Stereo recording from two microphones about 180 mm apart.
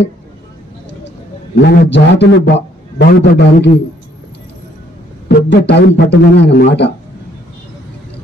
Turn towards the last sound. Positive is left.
turn(degrees=70)  # may be behind; listen again after turning